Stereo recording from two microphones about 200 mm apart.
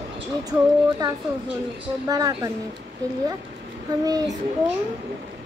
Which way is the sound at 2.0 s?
20° right (ahead or behind).